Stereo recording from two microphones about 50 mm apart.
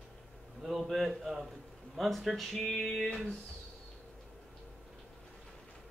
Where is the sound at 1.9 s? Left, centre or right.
Centre.